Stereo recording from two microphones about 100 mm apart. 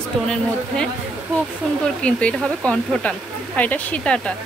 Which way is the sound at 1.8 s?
10° left (ahead or behind).